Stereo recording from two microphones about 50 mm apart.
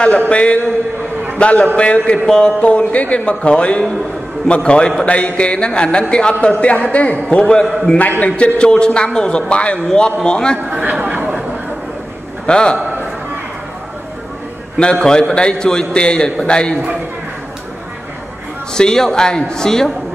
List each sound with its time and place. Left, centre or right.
0.3 s a man's voice: left
2.6 s a man's voice: left
10.7 s speech: right
12.4 s a man's voice: centre
12.7 s a man's voice: right
14.8 s a man's voice: centre
18.7 s a man's voice: centre